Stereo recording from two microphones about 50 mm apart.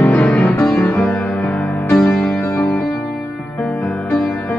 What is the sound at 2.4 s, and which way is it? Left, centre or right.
Music, left.